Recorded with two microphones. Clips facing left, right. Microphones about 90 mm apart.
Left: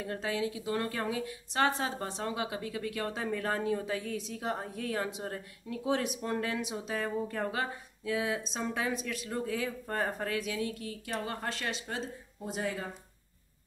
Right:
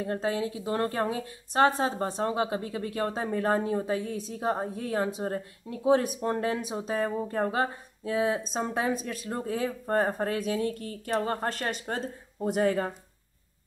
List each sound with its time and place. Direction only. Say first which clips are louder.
0.0 s a woman's voice: right 4 dB; 35° right (ahead or behind); by 12.9 s 55° right (ahead or behind)